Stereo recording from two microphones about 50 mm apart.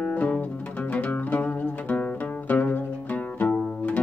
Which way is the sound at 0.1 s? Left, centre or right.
Left.